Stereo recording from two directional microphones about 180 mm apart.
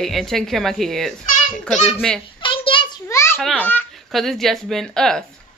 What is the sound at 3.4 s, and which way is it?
Speech, 5° left (ahead or behind).